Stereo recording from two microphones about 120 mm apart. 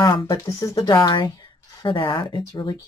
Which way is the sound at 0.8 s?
35° left (ahead or behind).